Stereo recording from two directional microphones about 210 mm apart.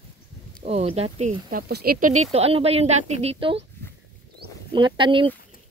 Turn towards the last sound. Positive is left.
turn(degrees=-25)  # may be behind; listen again after turning